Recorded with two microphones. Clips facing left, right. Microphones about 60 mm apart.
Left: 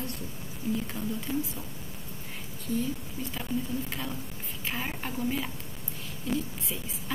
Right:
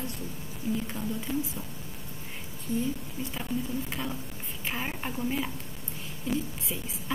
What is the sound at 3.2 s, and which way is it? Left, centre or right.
Speech, centre.